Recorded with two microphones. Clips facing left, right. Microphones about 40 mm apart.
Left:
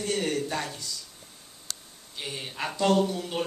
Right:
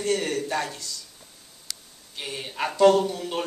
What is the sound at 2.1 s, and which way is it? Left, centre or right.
Speech, centre.